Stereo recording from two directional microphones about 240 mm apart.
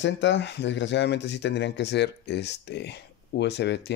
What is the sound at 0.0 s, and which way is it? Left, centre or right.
Speech, left.